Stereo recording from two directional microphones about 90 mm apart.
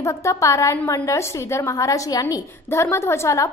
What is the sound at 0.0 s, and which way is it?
A woman's voice, 35° left (ahead or behind).